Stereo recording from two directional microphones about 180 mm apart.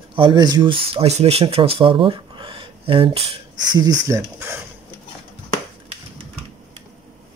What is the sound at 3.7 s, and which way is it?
Speech, 20° right (ahead or behind).